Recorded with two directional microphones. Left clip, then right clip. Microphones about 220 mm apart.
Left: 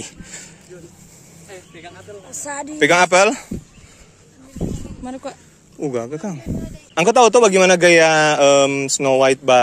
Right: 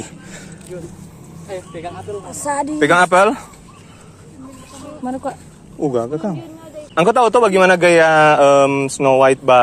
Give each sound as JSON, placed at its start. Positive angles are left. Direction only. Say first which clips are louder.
{"t": 2.3, "sound": "speech", "louder": "right 8 dB", "side_deg": 10}
{"t": 2.8, "sound": "speech", "louder": "right 1 dB", "side_deg": 55}
{"t": 5.0, "sound": "speech", "louder": "right 7 dB", "side_deg": 45}
{"t": 6.0, "sound": "speech", "louder": "right 5 dB", "side_deg": 70}
{"t": 7.0, "sound": "speech", "louder": "even", "side_deg": 50}